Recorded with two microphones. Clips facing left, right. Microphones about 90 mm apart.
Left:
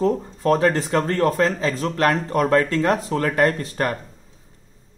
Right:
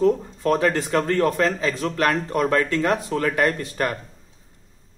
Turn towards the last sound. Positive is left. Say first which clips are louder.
# left 2 dB
turn(degrees=25)  # may be behind; listen again after turning